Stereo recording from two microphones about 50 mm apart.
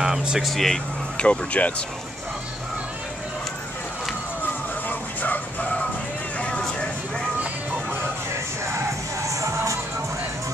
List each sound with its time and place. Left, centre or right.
0.0 s speech: centre
0.4 s speech: centre
1.1 s speech: left
4.8 s music: left
6.6 s vehicle: centre
9.3 s music: right